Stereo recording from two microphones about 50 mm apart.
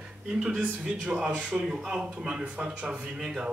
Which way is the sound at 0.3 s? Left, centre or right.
Centre.